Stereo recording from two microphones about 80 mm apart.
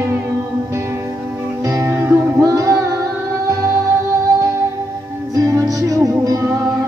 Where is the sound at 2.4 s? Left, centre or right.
Right.